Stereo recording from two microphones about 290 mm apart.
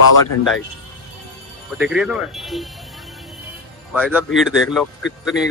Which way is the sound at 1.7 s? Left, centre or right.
Centre.